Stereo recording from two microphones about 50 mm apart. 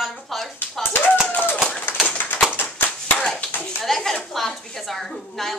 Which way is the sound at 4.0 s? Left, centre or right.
Centre.